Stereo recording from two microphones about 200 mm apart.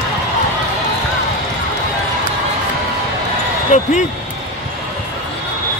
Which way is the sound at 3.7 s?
35° left (ahead or behind).